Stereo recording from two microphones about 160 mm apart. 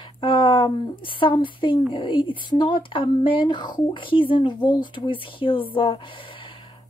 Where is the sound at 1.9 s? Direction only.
30° left (ahead or behind).